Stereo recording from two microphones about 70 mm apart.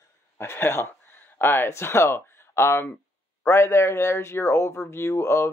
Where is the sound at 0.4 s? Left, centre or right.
Left.